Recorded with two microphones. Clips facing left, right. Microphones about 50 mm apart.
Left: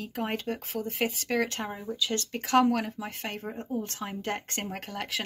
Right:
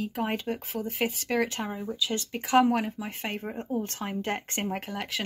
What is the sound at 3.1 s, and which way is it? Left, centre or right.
Speech, right.